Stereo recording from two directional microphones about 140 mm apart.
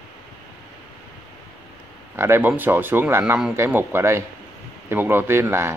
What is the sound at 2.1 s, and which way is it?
Speech, 15° right (ahead or behind).